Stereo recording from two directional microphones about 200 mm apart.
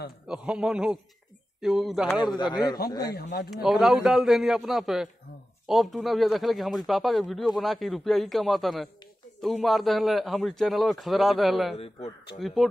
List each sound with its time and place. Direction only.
0.3 s speech: 5° right (ahead or behind)
2.3 s a man's voice: 20° left (ahead or behind)
3.6 s speech: centre (ahead or behind)
11.7 s a man's voice: 30° left (ahead or behind)
12.4 s speech: centre (ahead or behind)